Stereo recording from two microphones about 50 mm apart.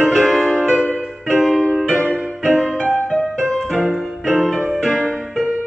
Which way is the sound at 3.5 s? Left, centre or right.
Centre.